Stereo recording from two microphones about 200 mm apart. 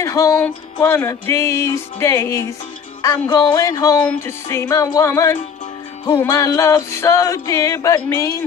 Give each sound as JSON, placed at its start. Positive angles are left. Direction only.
{"t": 0.0, "sound": "music", "side_deg": 15}